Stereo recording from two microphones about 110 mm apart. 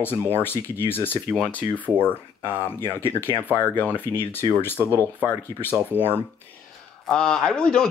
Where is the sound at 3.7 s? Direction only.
15° left (ahead or behind).